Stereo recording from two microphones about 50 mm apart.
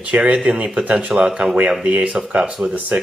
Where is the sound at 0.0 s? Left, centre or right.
Right.